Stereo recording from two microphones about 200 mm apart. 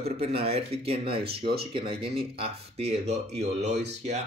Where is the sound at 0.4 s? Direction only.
30° right (ahead or behind).